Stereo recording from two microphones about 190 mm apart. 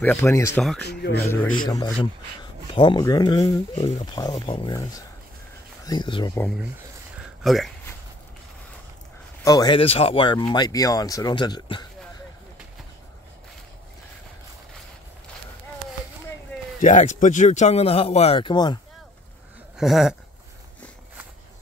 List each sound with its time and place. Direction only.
0.0 s speech: 10° left (ahead or behind)
0.6 s a sound: centre (ahead or behind)
0.8 s speech: 60° left (ahead or behind)
1.2 s speech: 10° left (ahead or behind)
2.7 s speech: 25° left (ahead or behind)
5.9 s speech: 25° left (ahead or behind)
7.4 s a sound: centre (ahead or behind)
9.4 s speech: 20° left (ahead or behind)
9.8 s speech: 30° left (ahead or behind)
16.8 s speech: 40° left (ahead or behind); by 18.8 s 25° left (ahead or behind)
19.8 s a sound: centre (ahead or behind)